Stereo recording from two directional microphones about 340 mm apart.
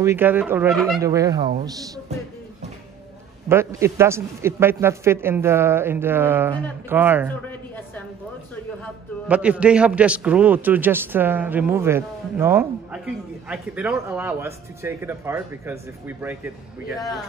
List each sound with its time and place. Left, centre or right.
0.0 s a man's voice: centre
3.4 s a man's voice: centre
7.4 s a sound: centre
9.3 s a man's voice: centre